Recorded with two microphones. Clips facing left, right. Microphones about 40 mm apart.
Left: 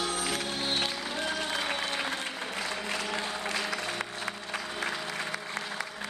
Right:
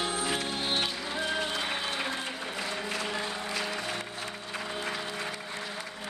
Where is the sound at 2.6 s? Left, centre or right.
Centre.